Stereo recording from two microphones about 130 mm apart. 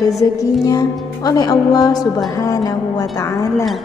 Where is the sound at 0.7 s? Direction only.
30° left (ahead or behind).